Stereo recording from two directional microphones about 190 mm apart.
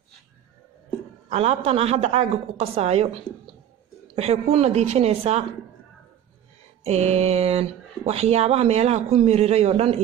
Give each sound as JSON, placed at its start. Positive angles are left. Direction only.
{"t": 1.3, "sound": "speech", "side_deg": -35}
{"t": 4.1, "sound": "speech", "side_deg": -30}
{"t": 6.8, "sound": "speech", "side_deg": -35}